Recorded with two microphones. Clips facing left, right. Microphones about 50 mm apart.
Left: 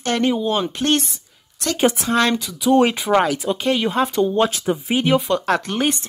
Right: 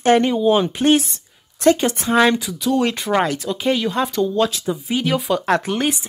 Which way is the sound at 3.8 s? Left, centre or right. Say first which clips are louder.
Left 1 dB; centre.